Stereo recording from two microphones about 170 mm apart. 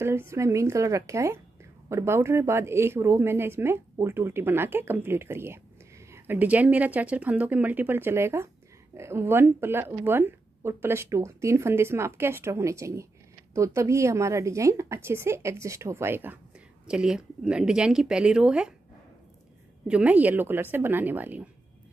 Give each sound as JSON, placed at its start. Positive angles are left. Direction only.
{"t": 0.0, "sound": "speech", "side_deg": -15}
{"t": 19.9, "sound": "speech", "side_deg": -10}